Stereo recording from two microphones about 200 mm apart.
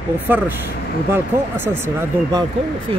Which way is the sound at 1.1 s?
10° right (ahead or behind).